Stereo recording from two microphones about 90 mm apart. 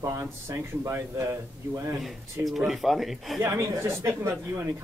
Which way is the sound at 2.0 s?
Centre (ahead or behind).